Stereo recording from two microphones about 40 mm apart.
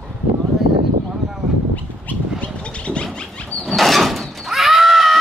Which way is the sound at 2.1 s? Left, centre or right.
Left.